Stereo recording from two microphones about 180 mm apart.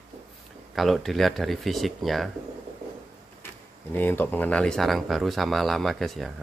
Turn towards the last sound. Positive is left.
turn(degrees=0)  # may be behind; listen again after turning